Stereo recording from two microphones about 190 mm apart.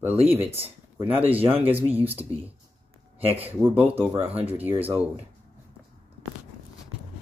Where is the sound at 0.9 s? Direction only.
10° right (ahead or behind).